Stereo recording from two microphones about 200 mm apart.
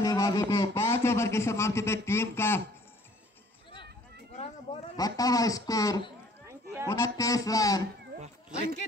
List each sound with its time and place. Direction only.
0.0 s a man's voice: 20° left (ahead or behind)
4.9 s speech: 20° left (ahead or behind)
6.4 s a sound: 15° right (ahead or behind)
6.9 s speech: 15° left (ahead or behind)